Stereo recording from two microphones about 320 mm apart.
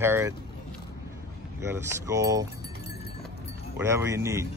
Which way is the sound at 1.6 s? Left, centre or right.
Centre.